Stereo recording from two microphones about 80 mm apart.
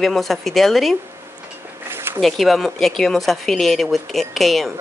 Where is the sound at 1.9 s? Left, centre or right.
Right.